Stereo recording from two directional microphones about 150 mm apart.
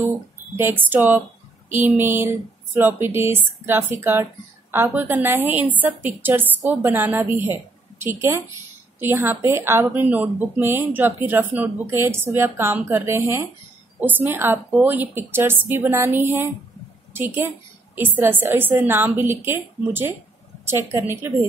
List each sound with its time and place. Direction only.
0.6 s speech: 15° right (ahead or behind)
17.9 s speech: 15° right (ahead or behind)